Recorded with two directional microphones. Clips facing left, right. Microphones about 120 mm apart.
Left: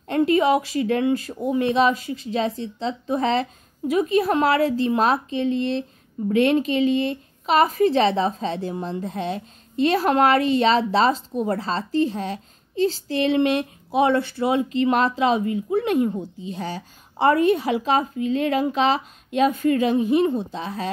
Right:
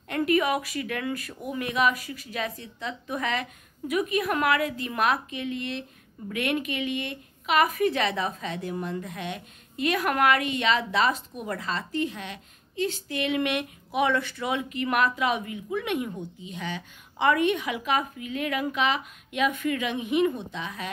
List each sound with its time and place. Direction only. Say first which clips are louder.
0.0 s speech: left 6 dB; 30° left (ahead or behind)